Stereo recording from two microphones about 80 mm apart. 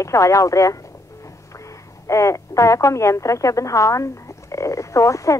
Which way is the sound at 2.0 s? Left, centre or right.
Left.